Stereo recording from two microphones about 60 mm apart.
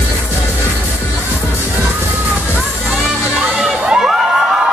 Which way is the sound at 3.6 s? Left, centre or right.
Centre.